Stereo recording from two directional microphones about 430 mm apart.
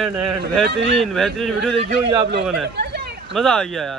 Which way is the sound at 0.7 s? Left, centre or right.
Right.